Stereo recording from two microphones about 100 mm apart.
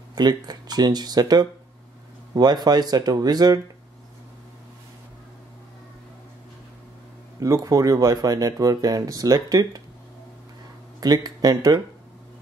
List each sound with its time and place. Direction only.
0.1 s speech: 45° right (ahead or behind)
7.3 s speech: 35° right (ahead or behind)
11.0 s speech: 40° right (ahead or behind)